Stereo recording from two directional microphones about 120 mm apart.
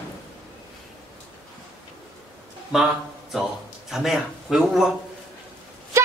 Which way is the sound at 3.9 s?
5° right (ahead or behind).